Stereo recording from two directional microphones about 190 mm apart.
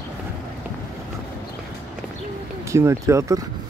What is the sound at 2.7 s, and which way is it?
Speech, 15° right (ahead or behind).